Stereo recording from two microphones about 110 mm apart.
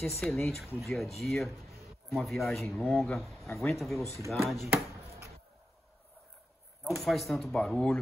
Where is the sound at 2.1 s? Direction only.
Centre (ahead or behind).